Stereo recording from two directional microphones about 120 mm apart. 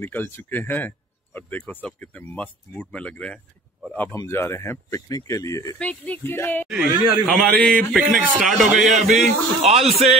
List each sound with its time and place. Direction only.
0.0 s speech: 15° left (ahead or behind)
5.8 s speech: 10° left (ahead or behind)
6.7 s speech: centre (ahead or behind)
9.1 s speech: 75° right (ahead or behind)